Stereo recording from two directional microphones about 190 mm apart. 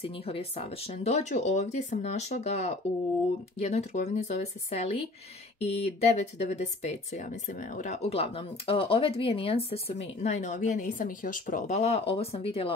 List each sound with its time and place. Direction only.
0.0 s speech: 30° left (ahead or behind)